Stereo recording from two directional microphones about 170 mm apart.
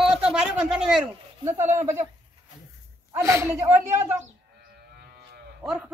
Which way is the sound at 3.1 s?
15° right (ahead or behind).